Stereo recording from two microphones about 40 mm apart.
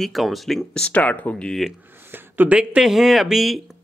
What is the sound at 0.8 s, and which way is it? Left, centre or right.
Speech, left.